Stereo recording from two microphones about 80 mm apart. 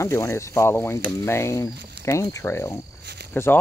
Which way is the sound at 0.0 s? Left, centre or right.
Left.